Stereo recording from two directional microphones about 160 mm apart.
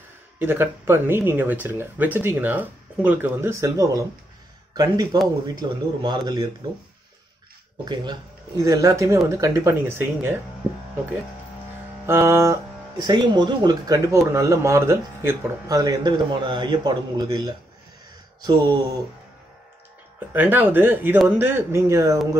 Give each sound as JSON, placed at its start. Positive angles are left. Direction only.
{"t": 0.4, "sound": "speech", "side_deg": -15}
{"t": 7.9, "sound": "speech", "side_deg": -25}
{"t": 12.1, "sound": "speech", "side_deg": -15}
{"t": 12.9, "sound": "speech", "side_deg": -30}
{"t": 20.3, "sound": "speech", "side_deg": -10}